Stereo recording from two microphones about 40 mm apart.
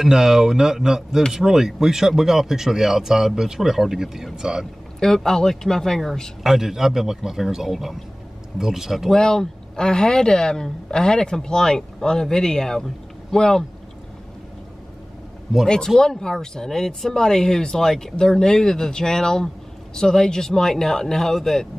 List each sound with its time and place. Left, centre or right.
0.0 s speech: centre
5.0 s speech: centre
6.4 s speech: centre
9.1 s speech: centre
15.6 s speech: centre